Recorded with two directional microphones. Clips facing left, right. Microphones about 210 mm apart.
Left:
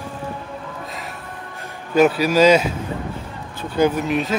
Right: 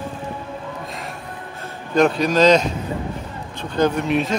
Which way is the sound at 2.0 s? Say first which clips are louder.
Left 1 dB; 5° left (ahead or behind).